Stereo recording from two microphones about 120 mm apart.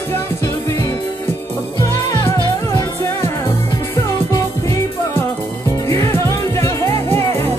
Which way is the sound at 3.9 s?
30° left (ahead or behind).